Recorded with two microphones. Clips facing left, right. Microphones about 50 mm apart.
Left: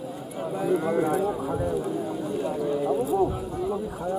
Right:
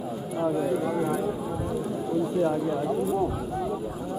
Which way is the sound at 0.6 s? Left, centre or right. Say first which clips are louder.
Left 2 dB; centre.